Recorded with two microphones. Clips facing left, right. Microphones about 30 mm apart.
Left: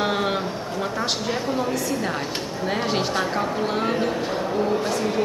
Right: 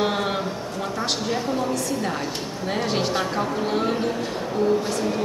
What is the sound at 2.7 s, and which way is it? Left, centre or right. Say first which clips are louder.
Speech: even; centre.